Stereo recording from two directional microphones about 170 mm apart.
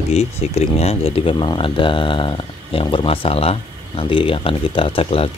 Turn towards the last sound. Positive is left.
turn(degrees=35)  # may be behind; listen again after turning